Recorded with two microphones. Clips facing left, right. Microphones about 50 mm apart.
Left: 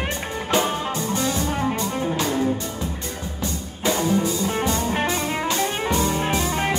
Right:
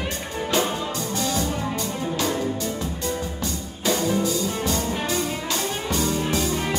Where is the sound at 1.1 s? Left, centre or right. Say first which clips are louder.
Left 1 dB; left.